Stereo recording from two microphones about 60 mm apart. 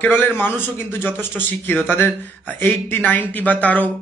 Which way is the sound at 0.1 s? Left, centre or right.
Left.